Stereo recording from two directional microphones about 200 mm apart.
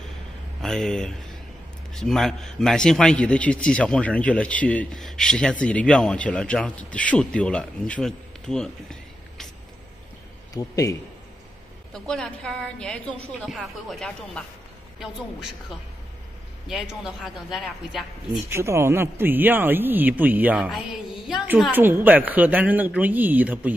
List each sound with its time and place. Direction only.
0.6 s a man's voice: centre (ahead or behind)
10.5 s a man's voice: 20° left (ahead or behind)
11.9 s a man's voice: 5° left (ahead or behind)
16.6 s a man's voice: centre (ahead or behind)
18.5 s a man's voice: 15° right (ahead or behind)